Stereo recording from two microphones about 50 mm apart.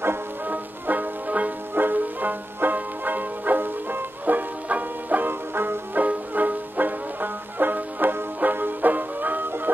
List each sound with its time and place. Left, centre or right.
0.5 s music: right
5.5 s music: right
5.9 s music: right